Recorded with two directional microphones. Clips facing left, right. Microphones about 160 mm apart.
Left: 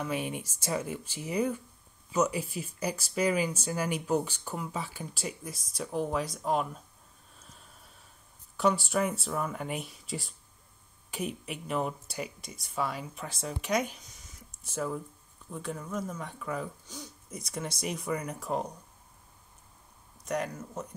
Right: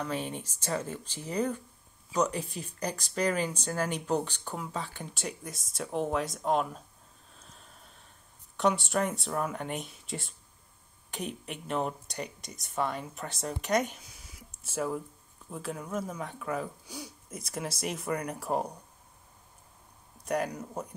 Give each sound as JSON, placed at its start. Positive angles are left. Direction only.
{"t": 0.0, "sound": "speech", "side_deg": 10}
{"t": 7.3, "sound": "a sound", "side_deg": 5}
{"t": 8.5, "sound": "speech", "side_deg": 0}
{"t": 20.2, "sound": "speech", "side_deg": -5}